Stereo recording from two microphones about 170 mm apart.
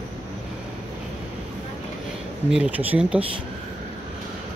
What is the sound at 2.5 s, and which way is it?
Speech, 10° right (ahead or behind).